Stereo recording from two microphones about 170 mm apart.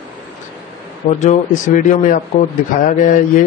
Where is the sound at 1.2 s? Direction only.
45° left (ahead or behind).